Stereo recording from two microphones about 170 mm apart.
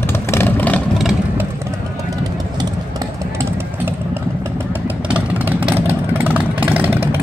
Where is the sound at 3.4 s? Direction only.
15° right (ahead or behind).